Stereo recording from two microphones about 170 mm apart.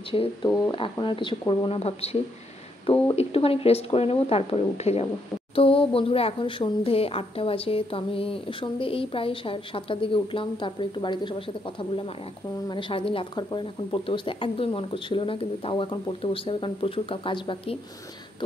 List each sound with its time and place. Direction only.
0.1 s speech: 30° left (ahead or behind)